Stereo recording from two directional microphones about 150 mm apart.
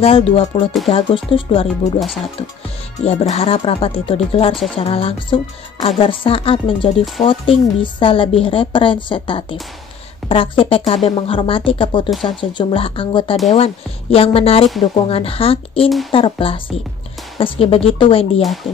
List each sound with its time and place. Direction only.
0.0 s a woman's voice: 40° left (ahead or behind)
3.0 s a woman's voice: 45° left (ahead or behind)
12.1 s speech: centre (ahead or behind)
12.4 s a woman's voice: 35° left (ahead or behind)